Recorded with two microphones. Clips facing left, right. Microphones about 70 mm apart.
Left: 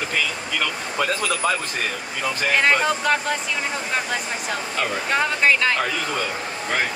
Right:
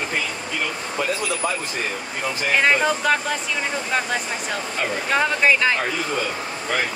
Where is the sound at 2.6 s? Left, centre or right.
Centre.